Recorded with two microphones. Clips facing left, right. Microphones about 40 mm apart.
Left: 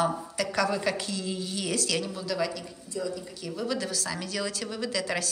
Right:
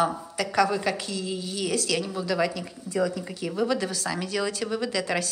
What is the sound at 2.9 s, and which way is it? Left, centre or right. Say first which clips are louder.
Speech: right 7 dB; right.